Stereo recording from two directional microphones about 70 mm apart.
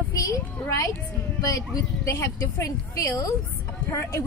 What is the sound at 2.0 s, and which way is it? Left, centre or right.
A woman's voice, left.